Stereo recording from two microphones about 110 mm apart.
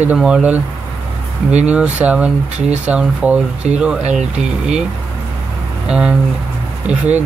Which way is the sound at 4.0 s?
90° right.